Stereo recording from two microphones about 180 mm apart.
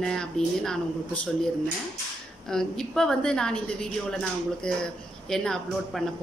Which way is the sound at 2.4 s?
5° left (ahead or behind).